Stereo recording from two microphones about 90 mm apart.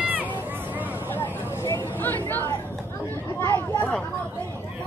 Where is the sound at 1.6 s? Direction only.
30° left (ahead or behind).